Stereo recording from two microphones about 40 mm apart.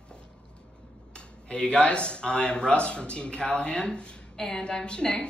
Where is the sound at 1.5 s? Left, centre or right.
Left.